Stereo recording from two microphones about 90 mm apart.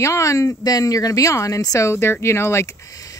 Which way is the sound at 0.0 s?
35° left (ahead or behind).